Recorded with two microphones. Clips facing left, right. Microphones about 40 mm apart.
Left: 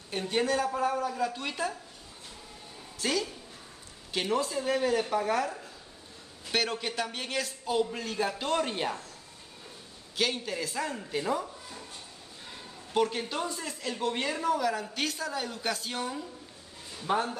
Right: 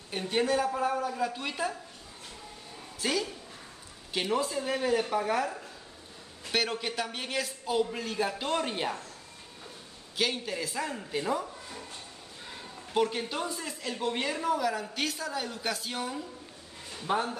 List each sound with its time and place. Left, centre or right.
0.1 s speech: centre
3.0 s a woman's voice: centre
10.1 s speech: centre
12.9 s speech: centre